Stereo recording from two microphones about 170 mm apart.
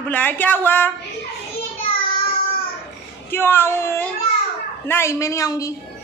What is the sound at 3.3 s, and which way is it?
A woman's voice, 15° left (ahead or behind).